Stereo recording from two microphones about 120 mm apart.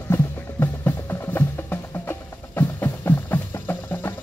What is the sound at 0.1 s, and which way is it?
Music, 20° left (ahead or behind).